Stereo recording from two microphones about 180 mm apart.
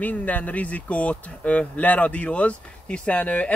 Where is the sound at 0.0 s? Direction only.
10° left (ahead or behind).